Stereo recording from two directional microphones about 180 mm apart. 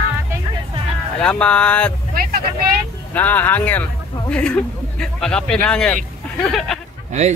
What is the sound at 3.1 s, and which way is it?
Speech, 10° left (ahead or behind).